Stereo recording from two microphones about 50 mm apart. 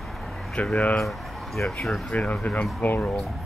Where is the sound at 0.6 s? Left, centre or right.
Left.